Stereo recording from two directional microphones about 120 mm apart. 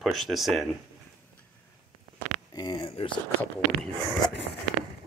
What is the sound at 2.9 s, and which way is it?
Speech, 50° left (ahead or behind).